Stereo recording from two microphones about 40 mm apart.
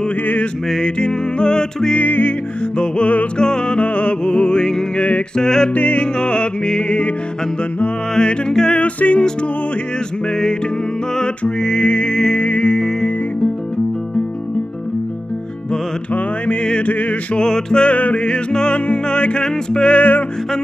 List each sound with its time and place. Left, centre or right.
0.7 s music: centre
2.0 s music: left
2.8 s music: left
5.3 s music: centre
5.7 s music: left
6.1 s music: left
8.1 s music: left
8.8 s music: left
11.6 s music: left
16.8 s music: left
17.4 s music: centre
17.8 s music: left
20.0 s music: left